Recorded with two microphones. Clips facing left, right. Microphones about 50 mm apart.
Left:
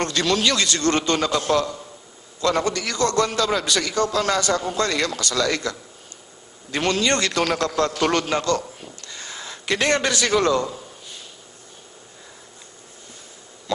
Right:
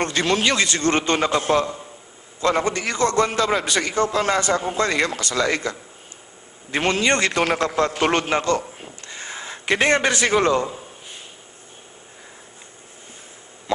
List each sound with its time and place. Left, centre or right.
0.0 s a man's voice: right